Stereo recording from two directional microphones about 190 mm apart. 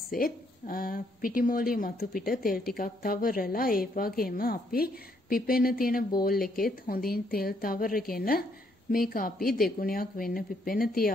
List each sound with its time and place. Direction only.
0.2 s a woman's voice: 50° left (ahead or behind)